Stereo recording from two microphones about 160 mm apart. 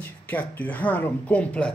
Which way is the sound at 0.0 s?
10° left (ahead or behind).